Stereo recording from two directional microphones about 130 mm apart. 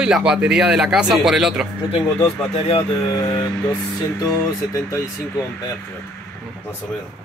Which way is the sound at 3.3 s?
10° left (ahead or behind).